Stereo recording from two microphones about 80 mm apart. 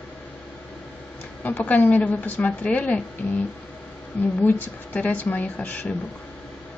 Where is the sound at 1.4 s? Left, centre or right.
Centre.